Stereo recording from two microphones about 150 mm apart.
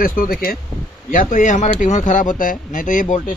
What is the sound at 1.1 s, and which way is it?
Speech, 60° left (ahead or behind).